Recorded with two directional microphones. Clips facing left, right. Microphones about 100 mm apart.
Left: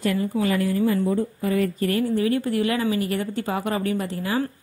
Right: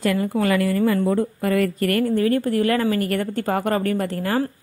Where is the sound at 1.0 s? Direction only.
80° right.